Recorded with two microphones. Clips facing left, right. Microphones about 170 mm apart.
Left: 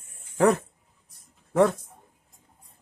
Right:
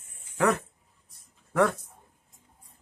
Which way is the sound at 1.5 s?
25° left (ahead or behind).